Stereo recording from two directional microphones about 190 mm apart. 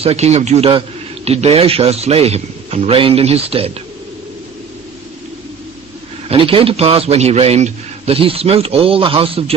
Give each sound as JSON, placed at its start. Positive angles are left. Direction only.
{"t": 0.0, "sound": "a man's voice", "side_deg": -35}
{"t": 6.2, "sound": "a man's voice", "side_deg": -30}